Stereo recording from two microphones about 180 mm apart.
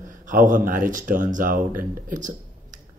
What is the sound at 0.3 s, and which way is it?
Speech, 45° right (ahead or behind).